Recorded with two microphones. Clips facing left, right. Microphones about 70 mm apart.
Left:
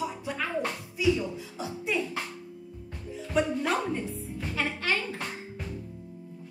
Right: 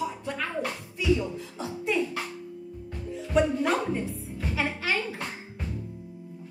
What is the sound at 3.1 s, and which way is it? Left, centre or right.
Music, centre.